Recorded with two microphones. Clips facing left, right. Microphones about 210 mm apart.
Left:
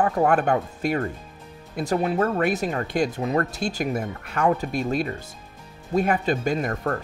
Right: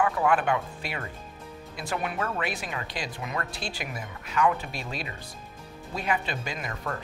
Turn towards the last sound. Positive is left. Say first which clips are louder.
# left 9 dB
turn(degrees=50)  # may be behind; listen again after turning